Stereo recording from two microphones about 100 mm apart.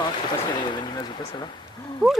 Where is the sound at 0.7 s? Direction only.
55° left (ahead or behind).